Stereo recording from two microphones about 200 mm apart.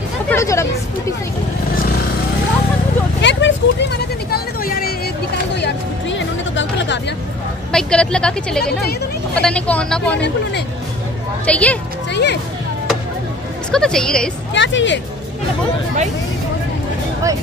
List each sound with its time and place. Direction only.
0.3 s speech: 15° left (ahead or behind)
3.2 s vehicle: 65° left (ahead or behind)
7.7 s a woman's voice: 5° left (ahead or behind)
11.4 s speech: 5° left (ahead or behind)
12.1 s music: 60° left (ahead or behind)
13.7 s a woman's voice: 5° left (ahead or behind)
14.5 s speech: 65° left (ahead or behind)